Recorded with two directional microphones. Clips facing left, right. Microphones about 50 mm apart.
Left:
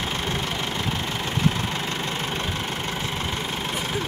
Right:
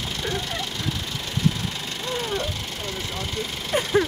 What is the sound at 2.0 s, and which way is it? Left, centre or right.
Vehicle, left.